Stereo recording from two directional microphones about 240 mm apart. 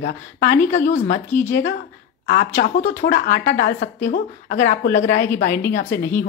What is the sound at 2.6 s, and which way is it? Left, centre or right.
Speech, left.